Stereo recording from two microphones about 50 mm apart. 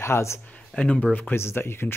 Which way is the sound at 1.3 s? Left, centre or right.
Left.